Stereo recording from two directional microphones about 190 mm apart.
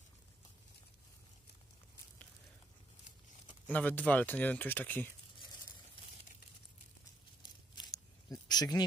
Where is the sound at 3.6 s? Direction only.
10° left (ahead or behind).